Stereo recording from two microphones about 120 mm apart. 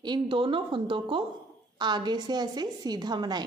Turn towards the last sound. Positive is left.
turn(degrees=-35)  # may be behind; listen again after turning